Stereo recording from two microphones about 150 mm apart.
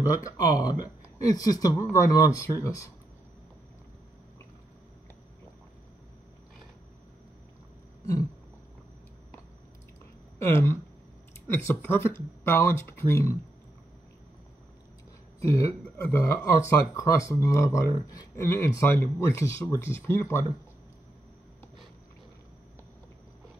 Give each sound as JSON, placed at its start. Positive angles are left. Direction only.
{"t": 0.0, "sound": "speech", "side_deg": 25}
{"t": 10.4, "sound": "speech", "side_deg": 20}
{"t": 15.4, "sound": "speech", "side_deg": 20}